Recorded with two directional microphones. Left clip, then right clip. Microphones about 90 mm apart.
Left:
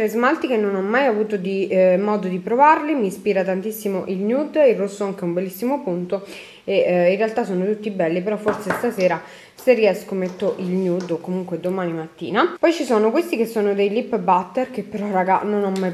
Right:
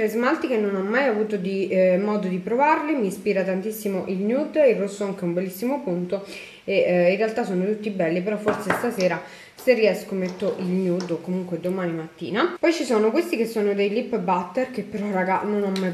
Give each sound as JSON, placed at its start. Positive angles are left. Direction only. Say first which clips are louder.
{"t": 0.0, "sound": "a woman's voice", "louder": "left 3 dB", "side_deg": 20}
{"t": 9.7, "sound": "a woman's voice", "louder": "left 3 dB", "side_deg": 20}